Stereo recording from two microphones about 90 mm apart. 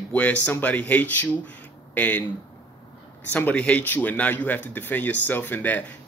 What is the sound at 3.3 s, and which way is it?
Speech, 15° left (ahead or behind).